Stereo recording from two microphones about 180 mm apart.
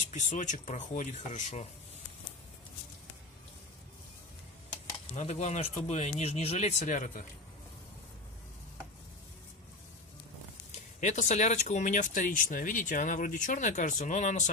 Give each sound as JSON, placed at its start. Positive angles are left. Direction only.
{"t": 0.1, "sound": "speech", "side_deg": 40}
{"t": 5.1, "sound": "speech", "side_deg": 40}
{"t": 11.0, "sound": "speech", "side_deg": 40}